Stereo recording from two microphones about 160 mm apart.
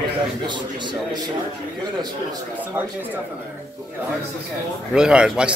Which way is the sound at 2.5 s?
10° right (ahead or behind).